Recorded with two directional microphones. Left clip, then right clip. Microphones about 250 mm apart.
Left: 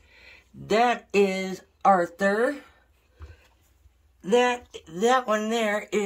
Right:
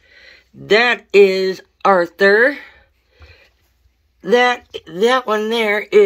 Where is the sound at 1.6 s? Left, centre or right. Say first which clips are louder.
Right 2 dB; centre.